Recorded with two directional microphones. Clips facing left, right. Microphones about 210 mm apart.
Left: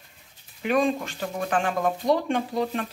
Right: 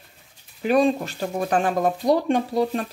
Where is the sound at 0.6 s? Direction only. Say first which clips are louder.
Right 4 dB; 35° right (ahead or behind).